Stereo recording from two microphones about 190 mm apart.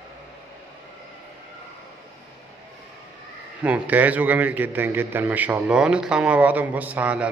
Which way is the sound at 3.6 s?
10° right (ahead or behind).